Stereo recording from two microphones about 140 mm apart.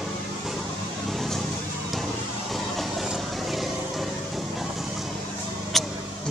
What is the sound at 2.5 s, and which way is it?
Vehicle, centre (ahead or behind).